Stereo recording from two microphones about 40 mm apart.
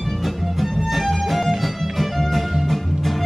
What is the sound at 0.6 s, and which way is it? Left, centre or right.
Music, centre.